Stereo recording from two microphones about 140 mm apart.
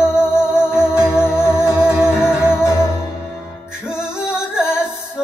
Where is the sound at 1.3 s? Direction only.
5° right (ahead or behind).